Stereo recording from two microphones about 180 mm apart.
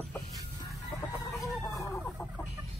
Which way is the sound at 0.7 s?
20° left (ahead or behind).